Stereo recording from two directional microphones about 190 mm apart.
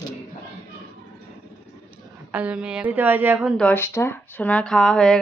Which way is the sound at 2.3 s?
5° right (ahead or behind).